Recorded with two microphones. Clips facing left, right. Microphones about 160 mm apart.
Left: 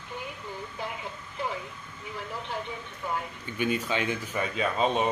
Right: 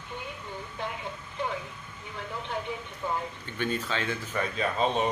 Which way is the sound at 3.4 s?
10° left (ahead or behind).